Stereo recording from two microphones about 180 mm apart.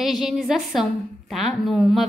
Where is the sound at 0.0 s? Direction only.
Centre (ahead or behind).